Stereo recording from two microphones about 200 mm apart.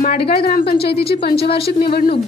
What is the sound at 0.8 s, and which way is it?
Speech, 30° left (ahead or behind).